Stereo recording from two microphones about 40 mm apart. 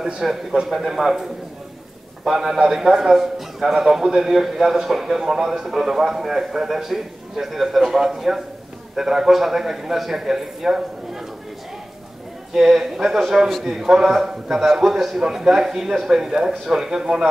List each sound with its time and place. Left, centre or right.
0.0 s a man's voice: centre
2.2 s a man's voice: centre
12.5 s a man's voice: centre
15.1 s a man's voice: centre